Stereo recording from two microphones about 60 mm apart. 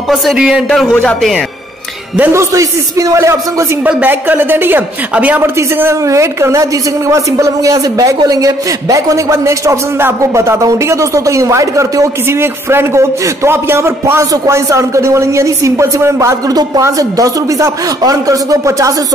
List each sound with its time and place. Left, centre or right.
0.1 s speech: centre
0.4 s a man's voice: centre
2.3 s a woman's voice: right
3.8 s a woman's voice: right
6.0 s a woman's voice: right
9.9 s a woman's voice: right
16.4 s a man's voice: right
17.0 s speech: right